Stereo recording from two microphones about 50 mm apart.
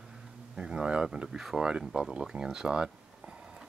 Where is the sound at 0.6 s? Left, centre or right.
Centre.